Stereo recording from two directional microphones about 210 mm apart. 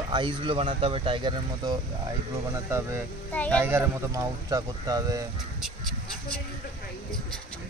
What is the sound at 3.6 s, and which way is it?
Speech, 10° right (ahead or behind).